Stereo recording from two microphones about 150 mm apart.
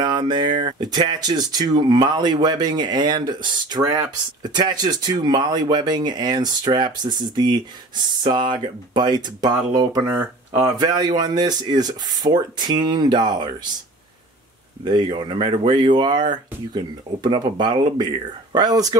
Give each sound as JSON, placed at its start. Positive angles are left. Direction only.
{"t": 0.0, "sound": "speech", "side_deg": -30}
{"t": 14.9, "sound": "speech", "side_deg": -30}